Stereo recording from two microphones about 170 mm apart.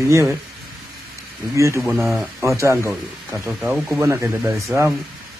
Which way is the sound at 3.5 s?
5° right (ahead or behind).